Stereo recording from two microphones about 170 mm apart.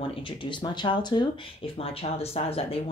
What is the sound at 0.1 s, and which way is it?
Speech, 30° left (ahead or behind).